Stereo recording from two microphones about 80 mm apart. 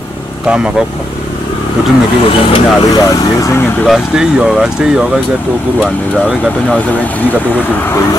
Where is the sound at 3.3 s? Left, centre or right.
Left.